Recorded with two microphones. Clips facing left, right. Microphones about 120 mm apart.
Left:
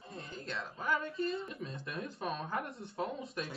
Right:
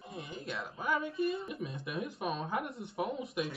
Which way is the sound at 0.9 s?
5° right (ahead or behind).